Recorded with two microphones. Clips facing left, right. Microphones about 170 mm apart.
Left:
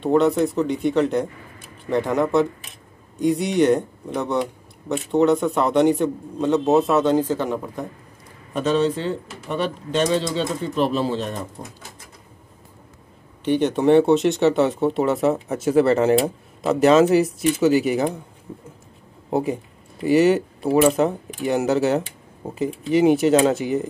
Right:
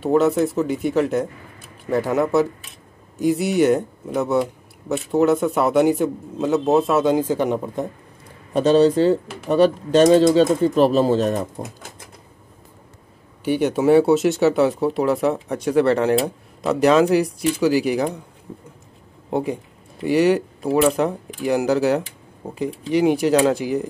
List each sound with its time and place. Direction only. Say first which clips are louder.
0.0 s speech: even; centre (ahead or behind); by 7.8 s 20° right (ahead or behind)
8.5 s speech: right 6 dB; 35° right (ahead or behind)
13.4 s speech: even; 10° right (ahead or behind)
19.3 s speech: left 1 dB; centre (ahead or behind)